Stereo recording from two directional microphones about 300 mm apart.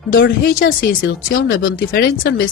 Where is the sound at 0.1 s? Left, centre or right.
Left.